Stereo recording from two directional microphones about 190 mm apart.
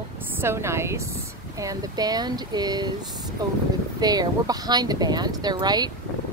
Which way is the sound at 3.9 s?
20° right (ahead or behind).